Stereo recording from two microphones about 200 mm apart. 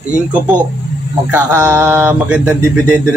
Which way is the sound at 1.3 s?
10° right (ahead or behind).